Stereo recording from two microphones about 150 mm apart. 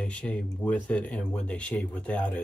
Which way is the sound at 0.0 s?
5° left (ahead or behind).